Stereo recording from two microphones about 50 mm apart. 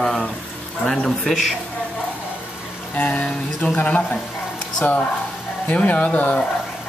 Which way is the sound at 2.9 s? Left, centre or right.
Left.